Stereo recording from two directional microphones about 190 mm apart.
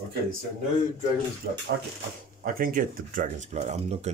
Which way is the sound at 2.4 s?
45° right (ahead or behind).